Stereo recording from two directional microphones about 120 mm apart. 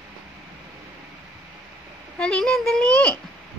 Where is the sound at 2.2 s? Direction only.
5° left (ahead or behind).